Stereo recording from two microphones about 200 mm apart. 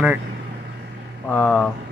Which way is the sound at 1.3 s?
5° left (ahead or behind).